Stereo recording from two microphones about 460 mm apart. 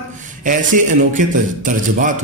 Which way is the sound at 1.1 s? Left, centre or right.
Centre.